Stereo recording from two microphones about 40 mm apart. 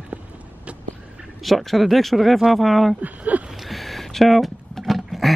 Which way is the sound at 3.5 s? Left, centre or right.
Centre.